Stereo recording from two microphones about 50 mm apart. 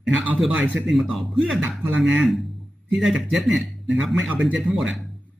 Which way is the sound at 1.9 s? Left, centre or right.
Right.